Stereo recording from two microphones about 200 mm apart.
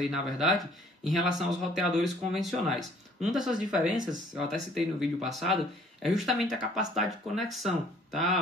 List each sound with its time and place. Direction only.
0.0 s speech: centre (ahead or behind)